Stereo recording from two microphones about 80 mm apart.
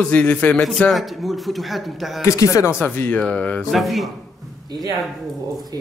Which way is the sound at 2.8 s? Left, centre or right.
Left.